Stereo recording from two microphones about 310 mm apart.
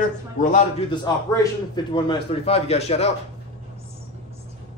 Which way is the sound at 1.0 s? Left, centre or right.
Centre.